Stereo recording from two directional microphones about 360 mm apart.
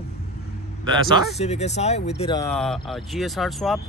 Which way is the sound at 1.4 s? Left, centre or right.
Centre.